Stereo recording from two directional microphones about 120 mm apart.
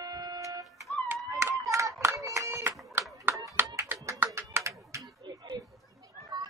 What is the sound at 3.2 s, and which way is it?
Music, 25° right (ahead or behind).